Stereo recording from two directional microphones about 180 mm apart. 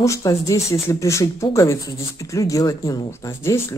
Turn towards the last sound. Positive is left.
turn(degrees=15)  # may be behind; listen again after turning